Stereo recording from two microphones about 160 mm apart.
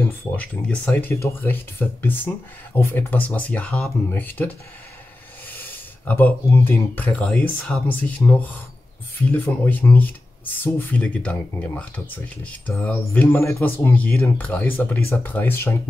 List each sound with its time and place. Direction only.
0.4 s speech: 10° left (ahead or behind)
8.2 s speech: 15° left (ahead or behind)